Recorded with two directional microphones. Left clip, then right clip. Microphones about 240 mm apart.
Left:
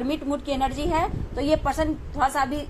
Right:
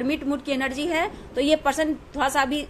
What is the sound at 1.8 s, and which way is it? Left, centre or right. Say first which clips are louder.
Speech: even; right.